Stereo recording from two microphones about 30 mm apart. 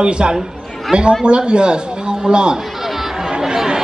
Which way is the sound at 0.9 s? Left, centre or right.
Right.